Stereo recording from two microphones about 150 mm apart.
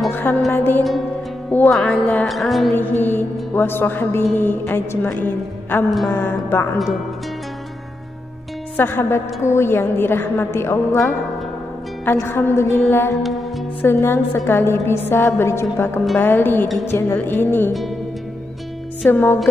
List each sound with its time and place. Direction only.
0.1 s music: 15° left (ahead or behind)
0.5 s a woman's voice: 15° left (ahead or behind)
2.7 s a woman's voice: 10° left (ahead or behind)
8.7 s a woman's voice: 15° left (ahead or behind)
13.2 s music: centre (ahead or behind)
13.8 s a woman's voice: 15° left (ahead or behind)
19.0 s a woman's voice: 15° left (ahead or behind)